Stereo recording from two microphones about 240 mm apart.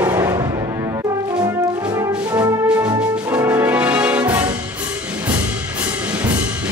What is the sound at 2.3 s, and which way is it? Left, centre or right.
Music, centre.